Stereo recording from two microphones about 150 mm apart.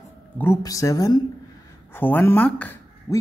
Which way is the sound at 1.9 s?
15° left (ahead or behind).